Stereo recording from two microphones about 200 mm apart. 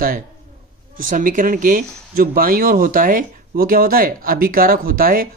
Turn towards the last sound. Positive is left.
turn(degrees=-45)  # may be behind; listen again after turning